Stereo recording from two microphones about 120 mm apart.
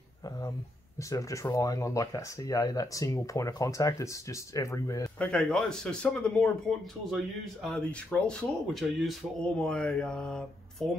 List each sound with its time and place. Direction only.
1.1 s speech: 30° left (ahead or behind)
5.2 s speech: 10° left (ahead or behind)
7.6 s speech: 5° left (ahead or behind)